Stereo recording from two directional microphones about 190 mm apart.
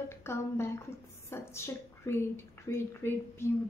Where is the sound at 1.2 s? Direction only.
15° left (ahead or behind).